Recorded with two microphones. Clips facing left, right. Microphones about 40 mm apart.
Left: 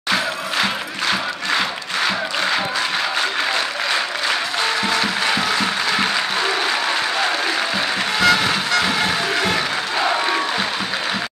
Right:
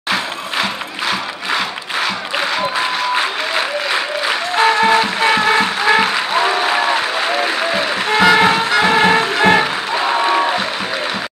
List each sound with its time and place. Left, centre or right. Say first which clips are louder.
0.1 s crowd: right 1 dB; centre
3.2 s applause: right 2 dB; centre
4.6 s music: right 11 dB; right
6.0 s applause: right 4 dB; centre
8.4 s music: right 6 dB; right
9.9 s applause: right 4 dB; centre